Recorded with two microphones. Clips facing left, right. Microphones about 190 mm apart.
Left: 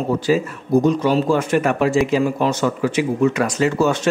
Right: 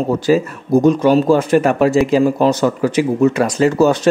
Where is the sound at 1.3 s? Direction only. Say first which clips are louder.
Right 5 dB; 35° right (ahead or behind).